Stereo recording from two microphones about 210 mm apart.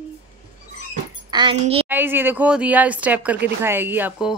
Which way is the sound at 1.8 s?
10° right (ahead or behind).